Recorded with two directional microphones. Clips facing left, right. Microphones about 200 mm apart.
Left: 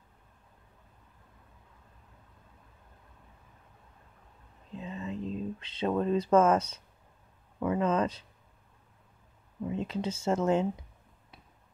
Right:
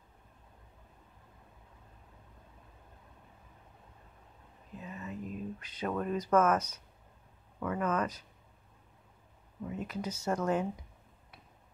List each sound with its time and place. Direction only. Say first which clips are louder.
4.7 s a sound: left 5 dB; 25° left (ahead or behind)
7.6 s speech: left 5 dB; 25° left (ahead or behind)
9.7 s speech: left 5 dB; 25° left (ahead or behind)